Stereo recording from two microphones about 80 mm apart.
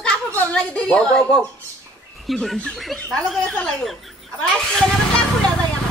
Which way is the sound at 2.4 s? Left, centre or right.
Centre.